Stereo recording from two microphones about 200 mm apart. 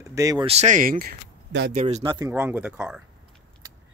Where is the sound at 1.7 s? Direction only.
35° right (ahead or behind).